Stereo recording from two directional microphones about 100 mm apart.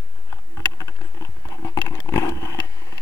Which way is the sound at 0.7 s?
35° left (ahead or behind).